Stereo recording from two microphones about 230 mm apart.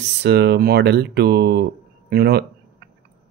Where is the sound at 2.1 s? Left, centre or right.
Right.